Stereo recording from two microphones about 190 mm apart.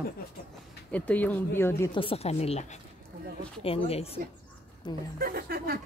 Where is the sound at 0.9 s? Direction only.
5° left (ahead or behind).